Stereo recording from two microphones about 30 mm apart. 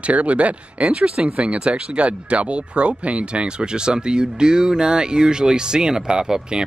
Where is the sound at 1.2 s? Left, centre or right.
Right.